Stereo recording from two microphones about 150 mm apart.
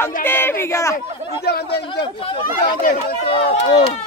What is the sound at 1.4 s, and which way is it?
Speech, 90° left.